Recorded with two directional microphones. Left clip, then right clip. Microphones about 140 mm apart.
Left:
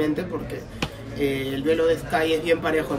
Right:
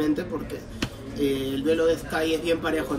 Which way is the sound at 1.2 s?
5° left (ahead or behind).